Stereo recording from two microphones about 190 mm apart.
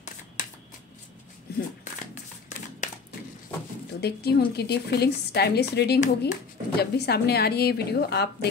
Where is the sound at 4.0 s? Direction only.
55° left (ahead or behind).